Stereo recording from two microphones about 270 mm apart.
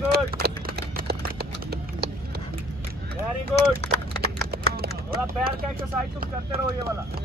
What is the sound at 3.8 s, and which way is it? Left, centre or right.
Run, left.